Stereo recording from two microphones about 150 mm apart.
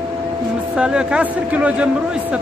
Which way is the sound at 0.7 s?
5° right (ahead or behind).